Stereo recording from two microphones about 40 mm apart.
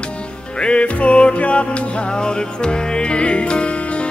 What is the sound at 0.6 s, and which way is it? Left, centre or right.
Music, left.